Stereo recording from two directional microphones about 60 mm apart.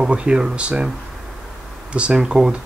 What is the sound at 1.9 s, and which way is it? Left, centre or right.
Speech, centre.